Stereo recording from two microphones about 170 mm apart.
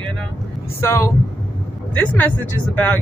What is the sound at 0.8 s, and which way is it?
Speech, 15° left (ahead or behind).